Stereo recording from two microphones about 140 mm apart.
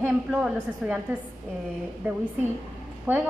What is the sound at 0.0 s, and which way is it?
Speech, 10° right (ahead or behind).